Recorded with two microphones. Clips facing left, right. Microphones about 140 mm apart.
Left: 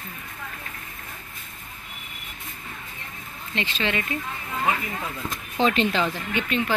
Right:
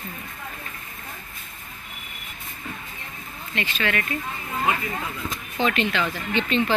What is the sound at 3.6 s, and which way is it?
Speech, 25° left (ahead or behind).